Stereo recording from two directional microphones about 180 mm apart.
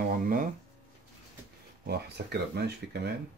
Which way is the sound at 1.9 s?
65° right (ahead or behind).